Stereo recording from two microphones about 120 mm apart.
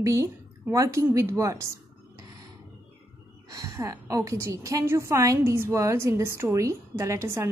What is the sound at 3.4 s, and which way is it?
A woman's voice, 25° right (ahead or behind).